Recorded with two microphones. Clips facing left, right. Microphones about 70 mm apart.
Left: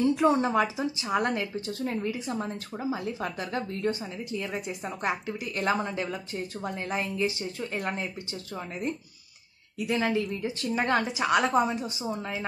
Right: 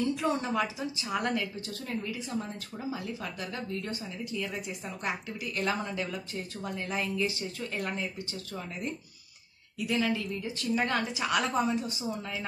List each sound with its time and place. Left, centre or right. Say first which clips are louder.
0.2 s speech: left 6 dB; left
9.8 s speech: left 3 dB; left